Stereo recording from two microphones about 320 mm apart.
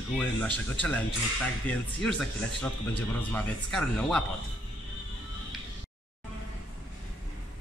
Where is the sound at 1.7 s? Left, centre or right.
Centre.